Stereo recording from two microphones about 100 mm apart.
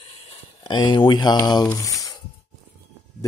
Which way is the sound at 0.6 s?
50° left (ahead or behind).